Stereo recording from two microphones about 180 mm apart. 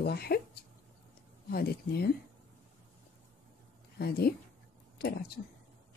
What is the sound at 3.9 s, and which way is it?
Speech, 60° left (ahead or behind).